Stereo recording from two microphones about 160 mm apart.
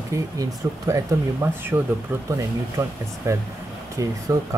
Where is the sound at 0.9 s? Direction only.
20° right (ahead or behind).